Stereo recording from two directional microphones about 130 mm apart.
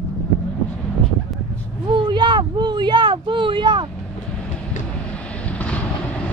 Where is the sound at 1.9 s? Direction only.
35° right (ahead or behind).